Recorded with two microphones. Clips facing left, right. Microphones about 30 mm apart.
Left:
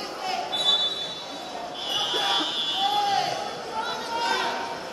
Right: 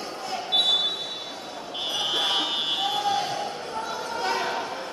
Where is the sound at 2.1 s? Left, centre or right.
Centre.